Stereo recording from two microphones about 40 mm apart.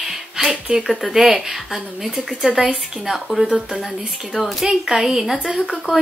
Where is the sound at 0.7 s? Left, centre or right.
Right.